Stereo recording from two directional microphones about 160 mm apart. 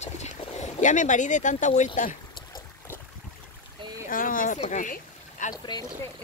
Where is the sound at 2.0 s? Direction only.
60° left (ahead or behind).